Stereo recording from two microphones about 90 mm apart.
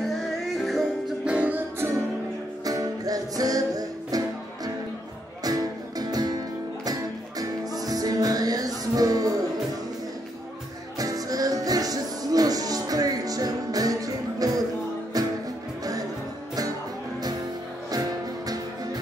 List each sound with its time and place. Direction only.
0.6 s music: centre (ahead or behind)
1.3 s music: 15° right (ahead or behind)
2.6 s music: 40° right (ahead or behind)
5.4 s music: 45° right (ahead or behind)
11.0 s music: 40° right (ahead or behind)